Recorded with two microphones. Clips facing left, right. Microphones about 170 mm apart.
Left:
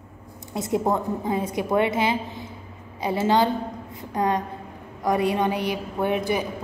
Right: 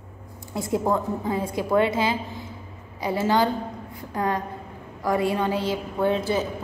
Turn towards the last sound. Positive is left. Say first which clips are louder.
# right 1 dB
turn(degrees=15)  # may be behind; listen again after turning